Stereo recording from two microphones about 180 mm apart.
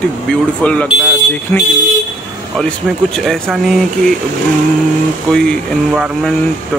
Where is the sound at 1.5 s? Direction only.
15° left (ahead or behind).